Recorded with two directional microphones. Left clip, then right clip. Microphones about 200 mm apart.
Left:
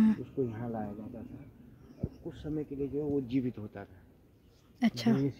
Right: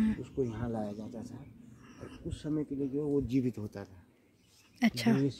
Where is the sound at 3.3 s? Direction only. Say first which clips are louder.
Right 1 dB; 40° right (ahead or behind).